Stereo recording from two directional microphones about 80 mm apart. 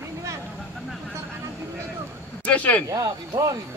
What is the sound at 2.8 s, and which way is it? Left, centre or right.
Speech, right.